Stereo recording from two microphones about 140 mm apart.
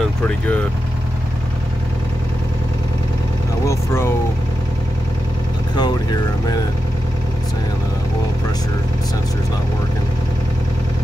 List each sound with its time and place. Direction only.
3.6 s speech: 20° left (ahead or behind)
5.8 s speech: 30° left (ahead or behind)